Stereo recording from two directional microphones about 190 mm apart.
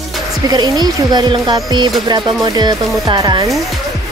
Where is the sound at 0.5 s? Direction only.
20° right (ahead or behind).